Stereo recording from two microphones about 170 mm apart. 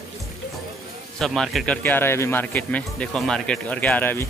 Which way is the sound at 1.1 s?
Centre (ahead or behind).